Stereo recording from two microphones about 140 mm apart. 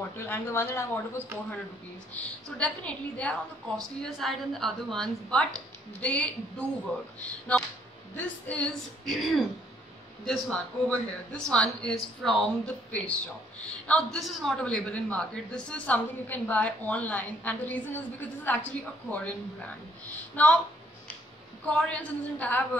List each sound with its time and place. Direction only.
0.1 s speech: 20° left (ahead or behind)
20.4 s speech: 10° left (ahead or behind)
21.7 s speech: 10° left (ahead or behind)